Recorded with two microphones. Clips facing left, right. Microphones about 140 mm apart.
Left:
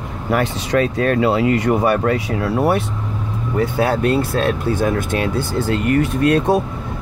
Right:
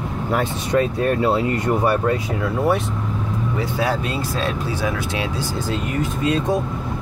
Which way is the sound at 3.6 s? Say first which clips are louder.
Left 6 dB; 55° left (ahead or behind).